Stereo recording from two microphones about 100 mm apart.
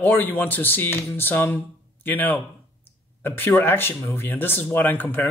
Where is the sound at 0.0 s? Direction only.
20° left (ahead or behind).